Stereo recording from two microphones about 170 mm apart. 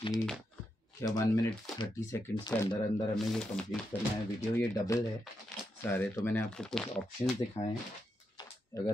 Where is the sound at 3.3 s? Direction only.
5° left (ahead or behind).